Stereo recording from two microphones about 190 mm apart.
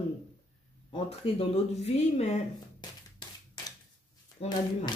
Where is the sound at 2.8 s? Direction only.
20° left (ahead or behind).